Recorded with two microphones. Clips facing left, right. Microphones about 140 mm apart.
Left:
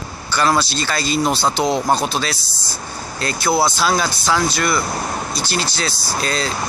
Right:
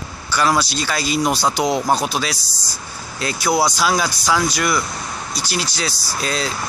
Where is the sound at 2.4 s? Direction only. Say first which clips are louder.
Left 3 dB; 35° right (ahead or behind).